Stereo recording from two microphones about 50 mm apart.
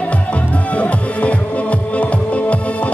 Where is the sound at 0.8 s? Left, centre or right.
Left.